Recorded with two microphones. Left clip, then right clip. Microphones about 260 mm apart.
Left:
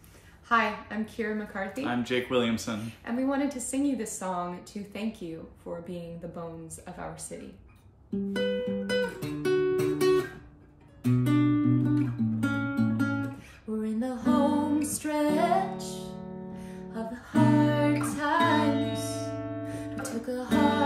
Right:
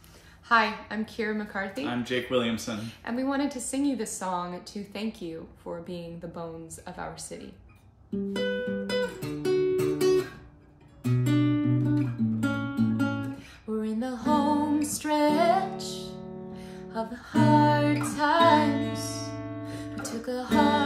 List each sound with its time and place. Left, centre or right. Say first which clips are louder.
0.5 s a woman's voice: right 2 dB; centre
1.8 s speech: left 3 dB; centre
2.8 s a woman's voice: even; centre
8.3 s guitar: even; centre
11.8 s music: even; centre
15.0 s music: right 4 dB; centre
18.4 s music: right 4 dB; centre